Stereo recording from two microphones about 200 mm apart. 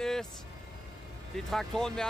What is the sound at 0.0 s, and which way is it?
Vehicle, 5° left (ahead or behind).